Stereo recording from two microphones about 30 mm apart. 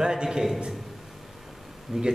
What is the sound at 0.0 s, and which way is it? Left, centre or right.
Speech, right.